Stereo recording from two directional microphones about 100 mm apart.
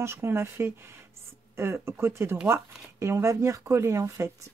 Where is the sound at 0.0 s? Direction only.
25° right (ahead or behind).